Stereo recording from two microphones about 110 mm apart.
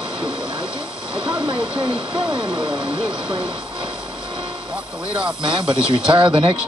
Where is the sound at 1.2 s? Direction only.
10° right (ahead or behind).